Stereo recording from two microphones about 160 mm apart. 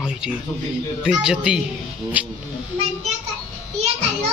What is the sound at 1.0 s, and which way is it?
Speech, 5° right (ahead or behind).